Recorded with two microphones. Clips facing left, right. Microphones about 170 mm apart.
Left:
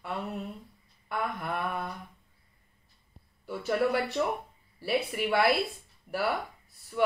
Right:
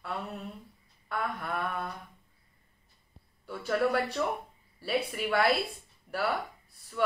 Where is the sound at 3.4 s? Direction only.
10° left (ahead or behind).